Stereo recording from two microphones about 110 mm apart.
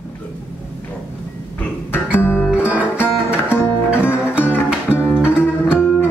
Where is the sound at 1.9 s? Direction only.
20° left (ahead or behind).